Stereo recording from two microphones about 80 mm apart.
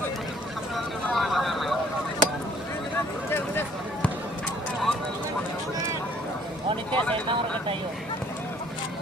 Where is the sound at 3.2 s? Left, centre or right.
Left.